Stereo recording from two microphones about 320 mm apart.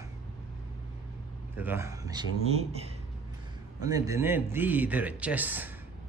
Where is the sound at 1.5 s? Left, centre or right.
Centre.